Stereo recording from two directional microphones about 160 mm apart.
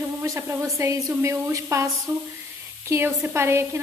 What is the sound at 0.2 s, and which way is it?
A woman's voice, 15° right (ahead or behind).